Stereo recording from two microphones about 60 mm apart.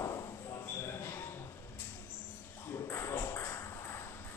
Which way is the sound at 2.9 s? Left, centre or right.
Left.